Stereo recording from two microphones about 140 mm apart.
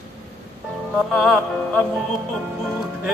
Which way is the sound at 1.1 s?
Centre (ahead or behind).